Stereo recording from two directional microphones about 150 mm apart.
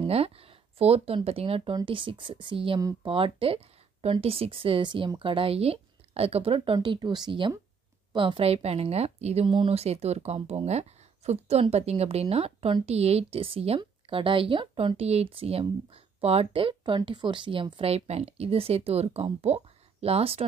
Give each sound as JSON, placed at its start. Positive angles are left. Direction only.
{"t": 0.0, "sound": "speech", "side_deg": -40}